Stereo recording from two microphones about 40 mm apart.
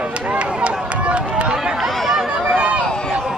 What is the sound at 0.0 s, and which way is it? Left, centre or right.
Run, right.